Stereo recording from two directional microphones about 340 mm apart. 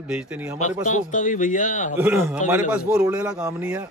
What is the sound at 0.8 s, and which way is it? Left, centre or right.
A man's voice, left.